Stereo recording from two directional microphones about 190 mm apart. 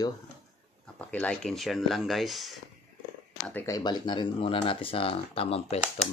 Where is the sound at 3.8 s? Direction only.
20° left (ahead or behind).